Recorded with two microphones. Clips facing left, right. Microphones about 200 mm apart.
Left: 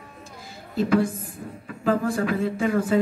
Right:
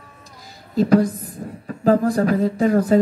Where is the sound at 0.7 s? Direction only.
40° right (ahead or behind).